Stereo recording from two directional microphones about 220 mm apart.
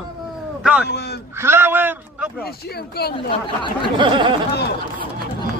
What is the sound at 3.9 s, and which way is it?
Speech, 20° right (ahead or behind).